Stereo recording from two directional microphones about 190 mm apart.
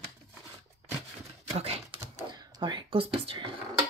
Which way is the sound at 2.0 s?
20° right (ahead or behind).